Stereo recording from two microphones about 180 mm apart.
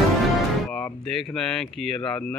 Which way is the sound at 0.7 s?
5° left (ahead or behind).